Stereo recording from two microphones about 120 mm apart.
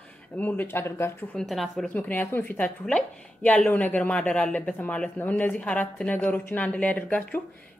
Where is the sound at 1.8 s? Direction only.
15° left (ahead or behind).